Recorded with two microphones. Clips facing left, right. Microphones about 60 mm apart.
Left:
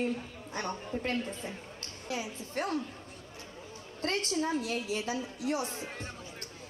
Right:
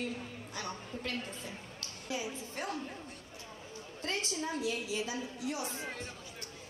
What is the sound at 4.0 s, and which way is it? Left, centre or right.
A woman's voice, left.